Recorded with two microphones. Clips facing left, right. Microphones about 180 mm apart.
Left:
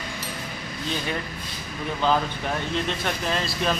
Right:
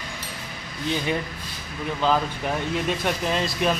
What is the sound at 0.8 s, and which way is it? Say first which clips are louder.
Speech: right 4 dB; 15° right (ahead or behind).